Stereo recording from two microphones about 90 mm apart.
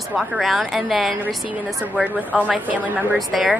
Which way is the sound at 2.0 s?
15° right (ahead or behind).